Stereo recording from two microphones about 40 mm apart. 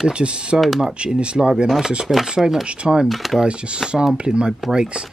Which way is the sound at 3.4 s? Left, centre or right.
Right.